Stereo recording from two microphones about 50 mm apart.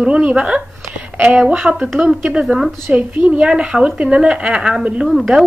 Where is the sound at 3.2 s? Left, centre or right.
Right.